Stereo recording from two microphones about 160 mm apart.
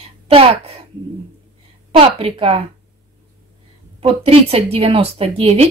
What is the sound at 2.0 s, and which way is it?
Speech, 35° right (ahead or behind).